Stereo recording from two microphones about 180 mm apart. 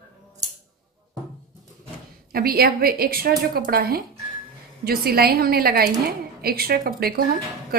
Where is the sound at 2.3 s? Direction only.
60° right (ahead or behind).